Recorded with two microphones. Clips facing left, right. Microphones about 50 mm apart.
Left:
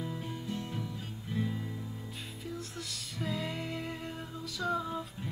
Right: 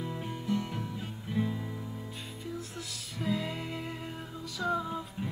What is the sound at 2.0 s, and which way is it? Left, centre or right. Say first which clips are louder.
Music: right 2 dB; centre.